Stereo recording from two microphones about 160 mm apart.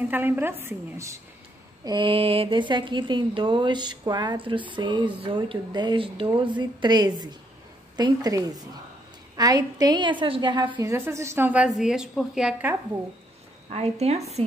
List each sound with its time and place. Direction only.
0.1 s a woman's voice: 15° right (ahead or behind)
1.9 s speech: 30° right (ahead or behind)
10.9 s a woman's voice: 15° right (ahead or behind)
13.7 s speech: 40° right (ahead or behind)